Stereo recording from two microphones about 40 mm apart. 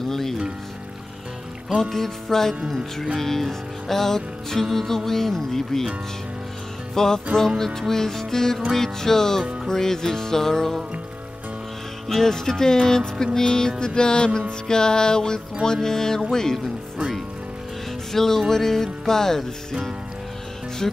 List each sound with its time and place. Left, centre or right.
0.1 s music: centre
1.8 s music: centre
2.7 s speech: centre
3.2 s music: centre
7.0 s music: centre
12.1 s music: centre
18.1 s music: centre
20.8 s speech: centre